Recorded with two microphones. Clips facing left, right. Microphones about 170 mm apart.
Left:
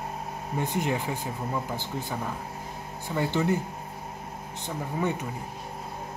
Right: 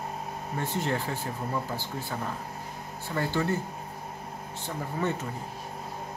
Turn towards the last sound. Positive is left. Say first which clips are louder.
# left 1 dB
turn(degrees=15)  # may be behind; listen again after turning